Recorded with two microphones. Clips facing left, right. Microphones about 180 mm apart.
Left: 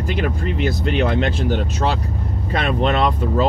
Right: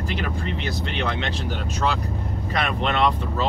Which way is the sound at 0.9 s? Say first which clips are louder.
Left 8 dB; 40° left (ahead or behind).